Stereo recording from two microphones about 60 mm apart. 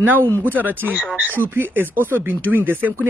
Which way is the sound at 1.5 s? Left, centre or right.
Right.